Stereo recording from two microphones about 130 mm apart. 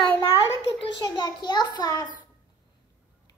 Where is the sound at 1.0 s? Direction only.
35° left (ahead or behind).